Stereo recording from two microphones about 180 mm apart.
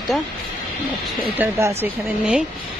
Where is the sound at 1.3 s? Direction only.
10° right (ahead or behind).